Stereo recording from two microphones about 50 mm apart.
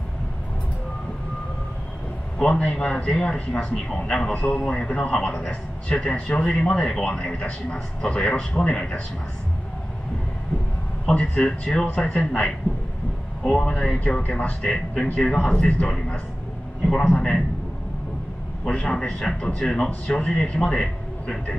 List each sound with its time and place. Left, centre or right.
2.4 s a man's voice: left
11.1 s a man's voice: centre
13.9 s a man's voice: left
14.6 s a man's voice: centre
15.5 s a man's voice: left
18.7 s a man's voice: centre
19.9 s a man's voice: left